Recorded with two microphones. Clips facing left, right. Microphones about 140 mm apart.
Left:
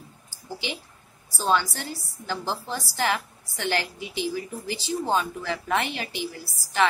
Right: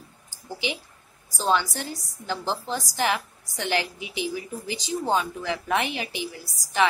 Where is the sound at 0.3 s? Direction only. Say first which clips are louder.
Right 3 dB; 15° right (ahead or behind).